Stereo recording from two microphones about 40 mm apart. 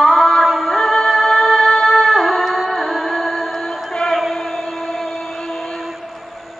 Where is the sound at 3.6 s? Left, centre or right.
Centre.